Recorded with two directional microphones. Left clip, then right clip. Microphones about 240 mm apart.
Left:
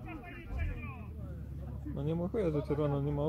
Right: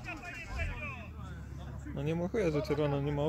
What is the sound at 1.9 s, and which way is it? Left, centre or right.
Speech, centre.